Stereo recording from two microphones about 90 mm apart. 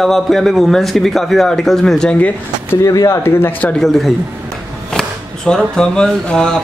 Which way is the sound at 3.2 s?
25° left (ahead or behind).